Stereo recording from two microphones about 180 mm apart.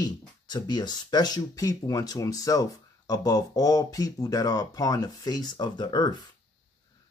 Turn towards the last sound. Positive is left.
turn(degrees=25)  # may be behind; listen again after turning